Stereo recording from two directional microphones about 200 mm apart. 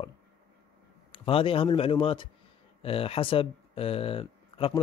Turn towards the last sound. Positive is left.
turn(degrees=25)  # may be behind; listen again after turning